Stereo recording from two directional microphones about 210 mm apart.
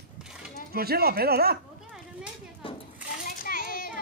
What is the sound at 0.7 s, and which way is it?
Speech, 45° right (ahead or behind).